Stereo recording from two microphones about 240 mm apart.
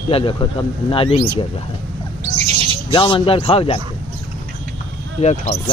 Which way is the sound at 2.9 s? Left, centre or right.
Left.